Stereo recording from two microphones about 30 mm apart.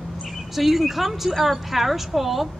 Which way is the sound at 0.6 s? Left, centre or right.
Centre.